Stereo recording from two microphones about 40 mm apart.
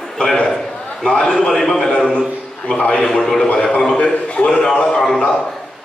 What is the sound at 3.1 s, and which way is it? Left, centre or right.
Speech, centre.